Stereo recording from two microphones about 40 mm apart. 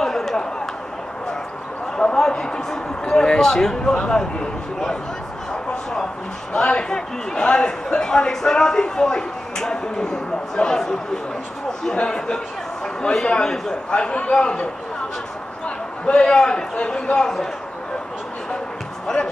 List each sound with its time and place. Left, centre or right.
0.0 s a sound: centre
2.1 s a man's voice: centre
6.6 s a man's voice: left
6.9 s a man's voice: centre
12.8 s a sound: centre
13.4 s a man's voice: centre
17.2 s speech: centre